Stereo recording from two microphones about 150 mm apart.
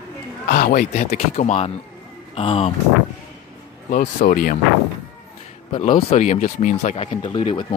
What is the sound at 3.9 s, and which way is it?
Speech, 65° left (ahead or behind).